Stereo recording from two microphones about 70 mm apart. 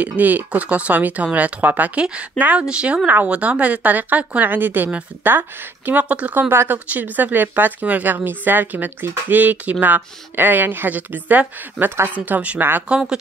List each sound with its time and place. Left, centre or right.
0.0 s speech: right
6.5 s speech: right
6.9 s speech: right